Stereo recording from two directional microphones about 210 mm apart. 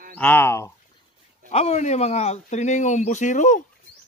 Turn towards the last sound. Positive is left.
turn(degrees=35)  # may be behind; listen again after turning